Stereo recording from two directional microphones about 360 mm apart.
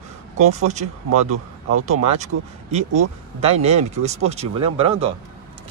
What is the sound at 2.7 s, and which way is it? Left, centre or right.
Speech, centre.